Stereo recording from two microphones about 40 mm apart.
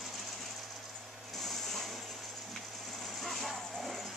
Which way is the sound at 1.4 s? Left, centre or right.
Centre.